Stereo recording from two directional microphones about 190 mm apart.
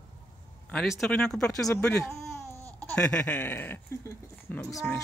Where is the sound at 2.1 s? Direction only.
15° left (ahead or behind).